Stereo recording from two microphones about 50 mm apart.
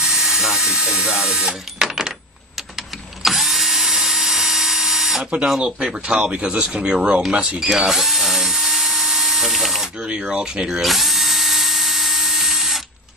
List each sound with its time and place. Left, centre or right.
0.0 s helicopter: centre
0.9 s speech: centre
3.3 s drill: centre
5.6 s speech: centre
7.7 s drill: centre
10.3 s speech: centre
10.8 s drill: centre